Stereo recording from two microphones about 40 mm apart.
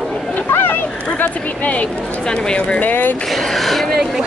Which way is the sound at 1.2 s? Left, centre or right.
Left.